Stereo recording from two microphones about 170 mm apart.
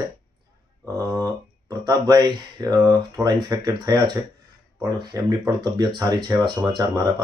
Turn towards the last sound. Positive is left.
turn(degrees=-20)  # may be behind; listen again after turning